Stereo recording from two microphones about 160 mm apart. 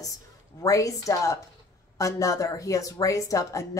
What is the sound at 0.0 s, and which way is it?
A woman's voice, 20° left (ahead or behind).